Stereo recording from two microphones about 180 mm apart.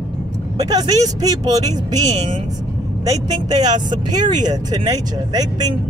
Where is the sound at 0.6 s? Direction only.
20° right (ahead or behind).